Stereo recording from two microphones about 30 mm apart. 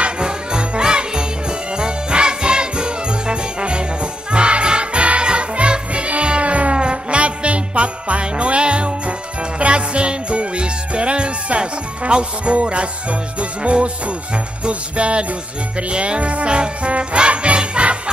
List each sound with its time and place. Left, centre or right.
0.2 s jingle bell: right
5.2 s music: right